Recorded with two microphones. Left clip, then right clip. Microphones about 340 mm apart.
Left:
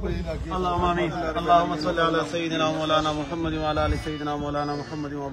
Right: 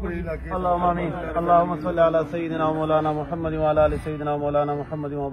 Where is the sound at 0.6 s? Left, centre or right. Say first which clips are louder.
Right 3 dB; centre.